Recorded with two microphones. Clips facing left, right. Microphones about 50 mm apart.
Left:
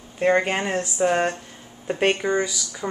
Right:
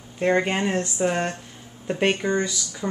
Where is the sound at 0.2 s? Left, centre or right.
Centre.